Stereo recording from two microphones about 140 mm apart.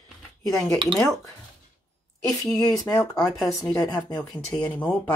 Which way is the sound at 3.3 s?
Centre (ahead or behind).